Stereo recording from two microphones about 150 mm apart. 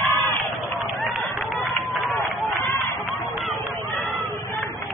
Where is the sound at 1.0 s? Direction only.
Centre (ahead or behind).